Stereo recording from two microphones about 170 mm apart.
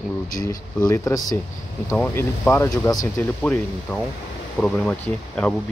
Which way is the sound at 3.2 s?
10° left (ahead or behind).